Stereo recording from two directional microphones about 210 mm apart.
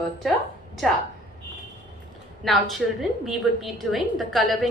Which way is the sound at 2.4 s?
Centre (ahead or behind).